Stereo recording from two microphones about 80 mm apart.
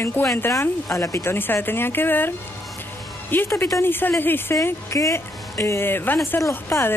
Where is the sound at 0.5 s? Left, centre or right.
Left.